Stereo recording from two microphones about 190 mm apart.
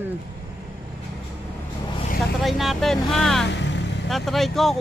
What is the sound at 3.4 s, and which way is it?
Vehicle, 65° left (ahead or behind).